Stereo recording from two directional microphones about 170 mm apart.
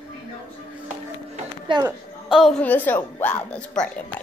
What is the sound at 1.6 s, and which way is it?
Speech, 25° right (ahead or behind).